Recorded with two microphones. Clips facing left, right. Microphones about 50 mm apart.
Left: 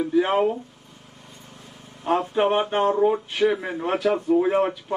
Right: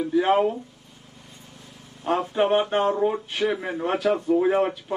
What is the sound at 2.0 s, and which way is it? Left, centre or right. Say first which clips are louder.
A man's voice: left 1 dB; centre.